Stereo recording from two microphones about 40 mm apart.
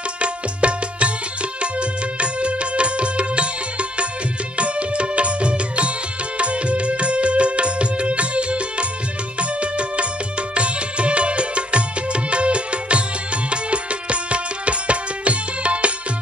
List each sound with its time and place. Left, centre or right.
0.2 s music: right